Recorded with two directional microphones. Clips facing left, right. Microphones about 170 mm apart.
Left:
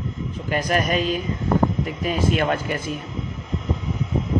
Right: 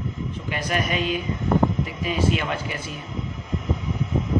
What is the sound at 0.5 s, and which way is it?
A man's voice, 40° left (ahead or behind).